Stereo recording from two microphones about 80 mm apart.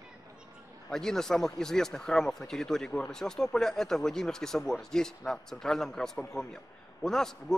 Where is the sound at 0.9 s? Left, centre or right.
Centre.